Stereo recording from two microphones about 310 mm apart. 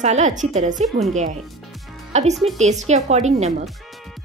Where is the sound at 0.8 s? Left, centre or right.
Centre.